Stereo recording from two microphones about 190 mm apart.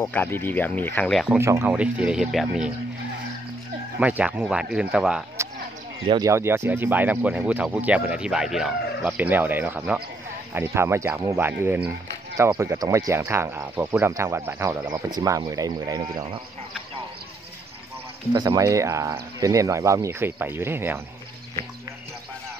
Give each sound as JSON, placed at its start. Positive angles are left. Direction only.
{"t": 0.0, "sound": "speech", "side_deg": 10}
{"t": 1.4, "sound": "speech", "side_deg": -10}
{"t": 4.0, "sound": "speech", "side_deg": -5}
{"t": 6.0, "sound": "speech", "side_deg": -20}
{"t": 18.3, "sound": "speech", "side_deg": -20}